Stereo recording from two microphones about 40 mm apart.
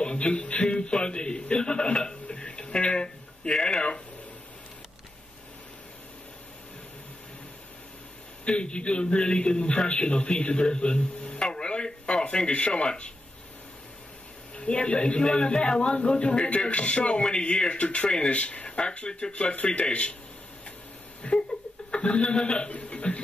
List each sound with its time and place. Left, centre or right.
0.0 s a man's voice: left
8.5 s a man's voice: left
14.5 s a man's voice: left
21.2 s a man's voice: left
22.8 s a sound: left